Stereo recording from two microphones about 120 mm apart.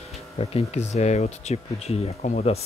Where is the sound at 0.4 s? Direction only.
55° left (ahead or behind).